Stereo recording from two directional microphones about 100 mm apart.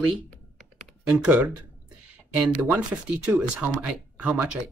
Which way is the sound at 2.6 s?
15° right (ahead or behind).